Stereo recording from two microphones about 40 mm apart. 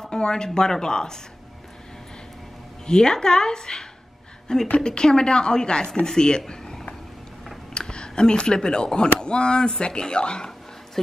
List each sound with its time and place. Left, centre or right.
0.0 s speech: centre
2.9 s speech: centre